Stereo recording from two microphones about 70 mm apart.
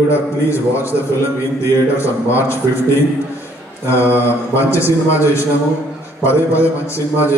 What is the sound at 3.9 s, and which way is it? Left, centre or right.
A man's voice, left.